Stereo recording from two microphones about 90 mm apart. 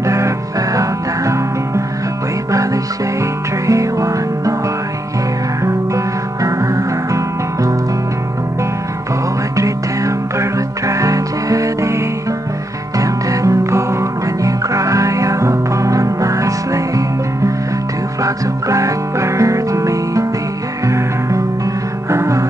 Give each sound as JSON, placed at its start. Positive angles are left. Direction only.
{"t": 0.0, "sound": "music", "side_deg": -35}
{"t": 2.5, "sound": "music", "side_deg": -40}
{"t": 5.6, "sound": "music", "side_deg": -35}
{"t": 9.6, "sound": "music", "side_deg": -35}
{"t": 13.0, "sound": "music", "side_deg": -40}
{"t": 18.2, "sound": "music", "side_deg": -35}